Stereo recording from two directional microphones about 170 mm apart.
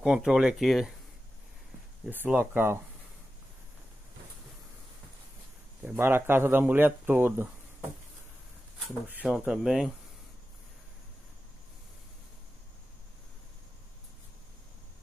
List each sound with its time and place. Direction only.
0.0 s speech: 5° right (ahead or behind)
2.0 s speech: 10° right (ahead or behind)
5.9 s speech: 10° right (ahead or behind)
9.1 s speech: 5° right (ahead or behind)